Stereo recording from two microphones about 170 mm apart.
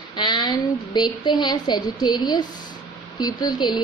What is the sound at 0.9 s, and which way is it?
A woman's voice, 25° left (ahead or behind).